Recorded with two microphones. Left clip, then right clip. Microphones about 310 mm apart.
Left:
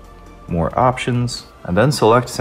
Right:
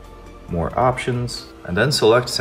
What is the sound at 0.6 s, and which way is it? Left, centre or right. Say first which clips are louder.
Speech: left 3 dB; left.